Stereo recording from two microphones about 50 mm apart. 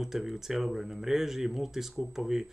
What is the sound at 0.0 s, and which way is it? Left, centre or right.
Speech, centre.